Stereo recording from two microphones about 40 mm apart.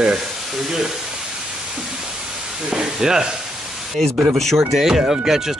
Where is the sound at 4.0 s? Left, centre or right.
Centre.